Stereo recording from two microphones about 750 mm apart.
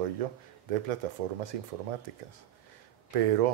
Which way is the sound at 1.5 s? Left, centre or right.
Right.